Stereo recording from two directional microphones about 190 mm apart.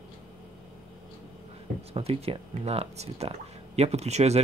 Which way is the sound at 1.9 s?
30° right (ahead or behind).